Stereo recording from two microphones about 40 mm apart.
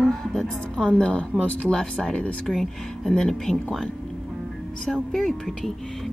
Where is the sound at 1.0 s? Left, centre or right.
Left.